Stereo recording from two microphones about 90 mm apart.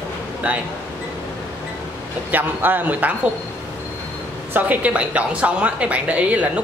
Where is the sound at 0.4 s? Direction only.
15° right (ahead or behind).